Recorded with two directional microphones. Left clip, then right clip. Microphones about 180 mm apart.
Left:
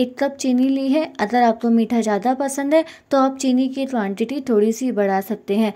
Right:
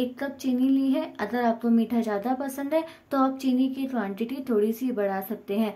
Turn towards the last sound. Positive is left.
turn(degrees=35)  # may be behind; listen again after turning